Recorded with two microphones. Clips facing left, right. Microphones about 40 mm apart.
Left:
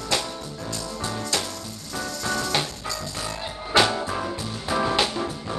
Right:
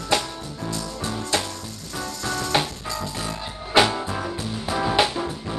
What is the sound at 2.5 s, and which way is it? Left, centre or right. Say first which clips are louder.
Music: right 6 dB; centre.